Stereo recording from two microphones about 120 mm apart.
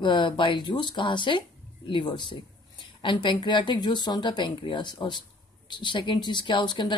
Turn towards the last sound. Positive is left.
turn(degrees=40)  # may be behind; listen again after turning